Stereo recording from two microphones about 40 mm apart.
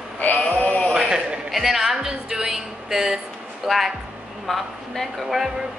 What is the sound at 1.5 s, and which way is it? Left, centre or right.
Speech, centre.